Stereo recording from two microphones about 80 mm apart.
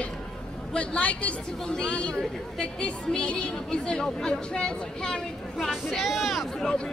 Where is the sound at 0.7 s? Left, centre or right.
Centre.